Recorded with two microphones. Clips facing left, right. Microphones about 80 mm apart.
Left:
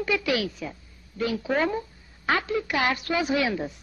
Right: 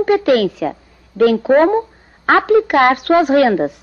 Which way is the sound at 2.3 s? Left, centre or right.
Right.